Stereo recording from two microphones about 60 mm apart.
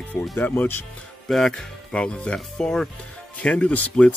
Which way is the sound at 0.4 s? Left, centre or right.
Left.